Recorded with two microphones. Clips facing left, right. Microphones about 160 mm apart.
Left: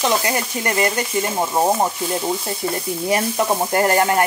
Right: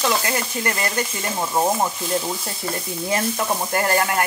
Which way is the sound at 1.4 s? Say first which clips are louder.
Left 2 dB; 20° left (ahead or behind).